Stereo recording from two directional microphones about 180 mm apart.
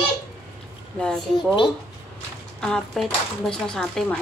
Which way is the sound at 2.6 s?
5° left (ahead or behind).